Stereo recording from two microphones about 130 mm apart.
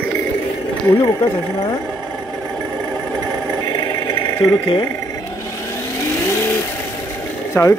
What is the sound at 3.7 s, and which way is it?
Vehicle, 40° left (ahead or behind).